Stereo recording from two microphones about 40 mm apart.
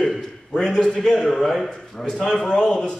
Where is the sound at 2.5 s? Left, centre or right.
Left.